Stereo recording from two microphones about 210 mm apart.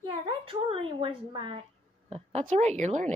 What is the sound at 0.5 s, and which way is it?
A woman's voice, 25° right (ahead or behind).